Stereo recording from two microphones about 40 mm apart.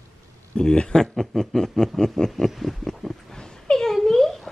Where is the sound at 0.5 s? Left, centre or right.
Centre.